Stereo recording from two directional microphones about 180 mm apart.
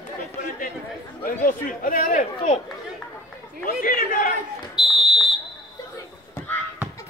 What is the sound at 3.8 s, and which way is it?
Chatter, 50° left (ahead or behind).